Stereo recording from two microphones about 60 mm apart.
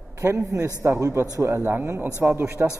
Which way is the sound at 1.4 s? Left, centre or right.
Right.